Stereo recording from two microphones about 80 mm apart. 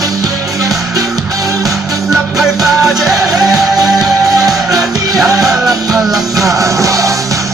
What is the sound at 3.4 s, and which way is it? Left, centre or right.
Music, right.